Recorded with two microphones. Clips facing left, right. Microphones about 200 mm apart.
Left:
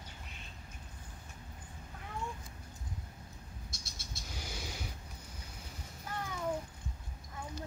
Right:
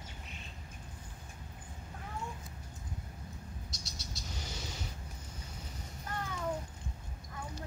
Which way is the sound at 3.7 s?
50° left (ahead or behind).